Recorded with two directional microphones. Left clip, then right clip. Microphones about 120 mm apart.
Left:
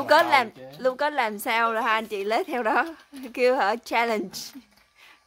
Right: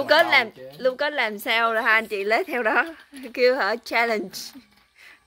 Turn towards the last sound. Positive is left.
turn(degrees=15)  # may be behind; listen again after turning